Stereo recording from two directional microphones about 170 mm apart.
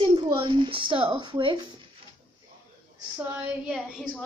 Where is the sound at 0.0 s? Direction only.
30° right (ahead or behind).